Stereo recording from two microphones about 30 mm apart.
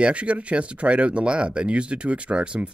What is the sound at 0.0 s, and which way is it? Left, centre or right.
Speech, right.